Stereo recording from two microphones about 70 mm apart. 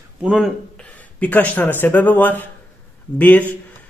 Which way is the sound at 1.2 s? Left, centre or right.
Left.